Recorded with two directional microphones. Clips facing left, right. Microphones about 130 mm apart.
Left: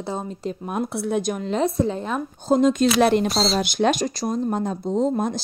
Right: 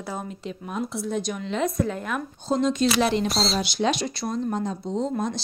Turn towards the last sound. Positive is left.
turn(degrees=50)  # may be behind; listen again after turning